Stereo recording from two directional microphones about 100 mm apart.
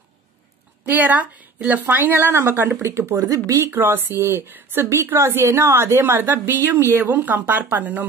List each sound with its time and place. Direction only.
0.8 s a woman's voice: 15° right (ahead or behind)